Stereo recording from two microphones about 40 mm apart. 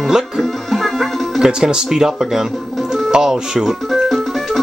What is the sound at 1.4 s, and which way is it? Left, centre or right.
Speech, centre.